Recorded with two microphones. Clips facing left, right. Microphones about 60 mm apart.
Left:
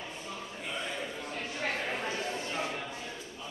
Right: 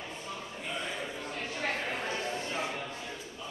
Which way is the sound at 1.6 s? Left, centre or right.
Centre.